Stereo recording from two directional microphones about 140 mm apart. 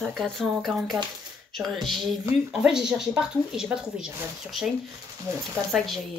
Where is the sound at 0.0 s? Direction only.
Centre (ahead or behind).